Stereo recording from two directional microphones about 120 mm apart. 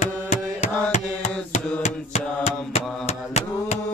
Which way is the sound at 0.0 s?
70° left (ahead or behind).